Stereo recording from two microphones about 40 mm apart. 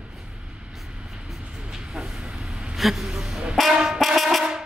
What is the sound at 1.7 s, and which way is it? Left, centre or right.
Train, centre.